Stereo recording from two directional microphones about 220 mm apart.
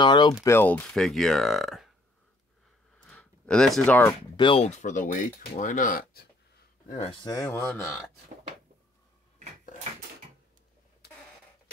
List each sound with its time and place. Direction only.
0.0 s speech: 20° left (ahead or behind); by 1.9 s centre (ahead or behind)
3.0 s a sound: 5° left (ahead or behind)
4.4 s speech: 25° left (ahead or behind)
6.9 s speech: 25° left (ahead or behind)